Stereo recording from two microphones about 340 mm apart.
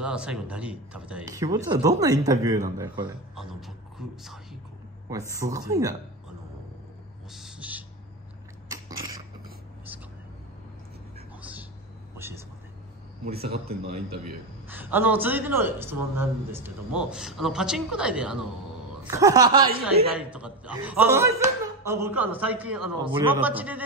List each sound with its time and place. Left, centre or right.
0.0 s speech: centre
5.3 s speech: centre
7.3 s owl: centre
8.6 s a sound: centre
12.2 s whispering: centre
13.2 s speech: right
14.7 s speech: centre